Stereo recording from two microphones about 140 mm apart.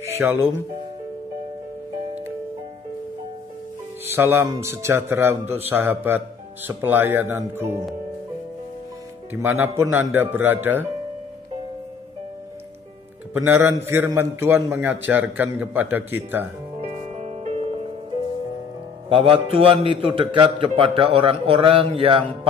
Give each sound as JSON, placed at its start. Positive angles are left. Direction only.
{"t": 0.1, "sound": "speech", "side_deg": -15}
{"t": 4.0, "sound": "speech", "side_deg": -15}
{"t": 9.3, "sound": "speech", "side_deg": -15}
{"t": 13.3, "sound": "speech", "side_deg": -15}
{"t": 16.7, "sound": "music", "side_deg": -55}
{"t": 19.0, "sound": "a man's voice", "side_deg": -40}